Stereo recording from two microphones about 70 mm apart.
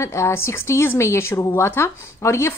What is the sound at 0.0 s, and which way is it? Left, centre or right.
A woman's voice, left.